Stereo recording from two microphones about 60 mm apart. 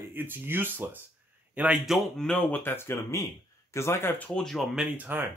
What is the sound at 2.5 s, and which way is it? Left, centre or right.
A man's voice, left.